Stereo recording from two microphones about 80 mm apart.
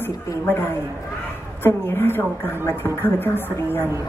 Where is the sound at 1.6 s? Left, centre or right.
Left.